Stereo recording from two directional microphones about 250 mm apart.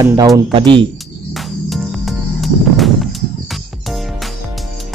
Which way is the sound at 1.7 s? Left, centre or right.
Centre.